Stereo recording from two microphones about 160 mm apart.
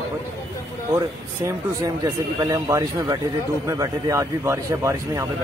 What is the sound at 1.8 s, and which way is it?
A man's voice, 20° right (ahead or behind).